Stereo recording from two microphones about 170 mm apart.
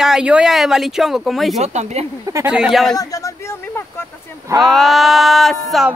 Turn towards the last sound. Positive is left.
turn(degrees=0)  # may be behind; listen again after turning